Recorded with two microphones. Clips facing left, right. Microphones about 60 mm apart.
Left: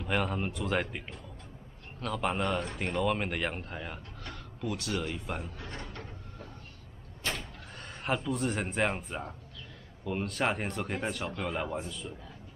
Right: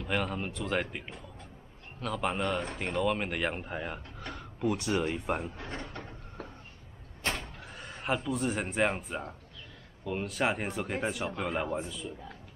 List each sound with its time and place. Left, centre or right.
0.0 s speech: centre; by 6.0 s right
7.7 s speech: centre